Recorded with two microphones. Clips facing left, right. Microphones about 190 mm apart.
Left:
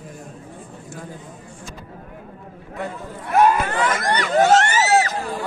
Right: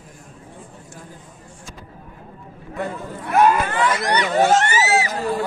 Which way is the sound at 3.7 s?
50° left (ahead or behind).